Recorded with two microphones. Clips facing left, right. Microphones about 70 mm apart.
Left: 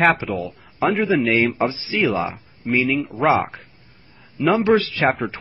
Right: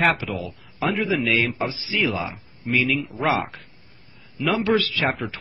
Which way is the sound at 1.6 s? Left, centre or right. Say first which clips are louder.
Left 5 dB; left.